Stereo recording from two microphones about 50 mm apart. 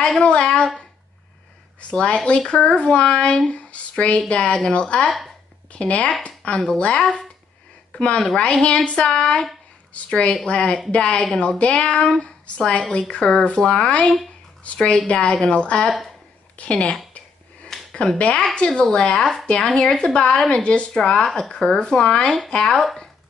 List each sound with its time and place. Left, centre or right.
0.2 s speech: left
1.8 s a woman's voice: left
17.9 s speech: centre
21.0 s speech: centre